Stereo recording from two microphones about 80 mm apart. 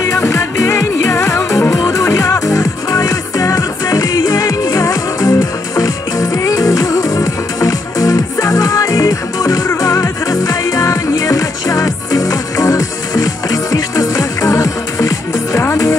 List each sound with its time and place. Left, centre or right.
0.0 s music: left